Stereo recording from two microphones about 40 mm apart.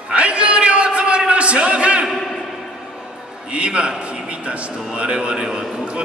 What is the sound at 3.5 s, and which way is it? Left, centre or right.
A man's voice, right.